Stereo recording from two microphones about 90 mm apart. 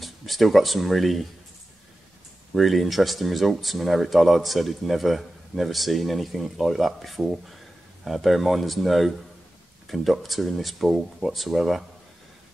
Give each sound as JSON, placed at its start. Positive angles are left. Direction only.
{"t": 0.0, "sound": "speech", "side_deg": 0}
{"t": 2.5, "sound": "speech", "side_deg": 0}